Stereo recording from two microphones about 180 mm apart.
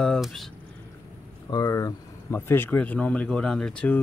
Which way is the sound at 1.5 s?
20° left (ahead or behind).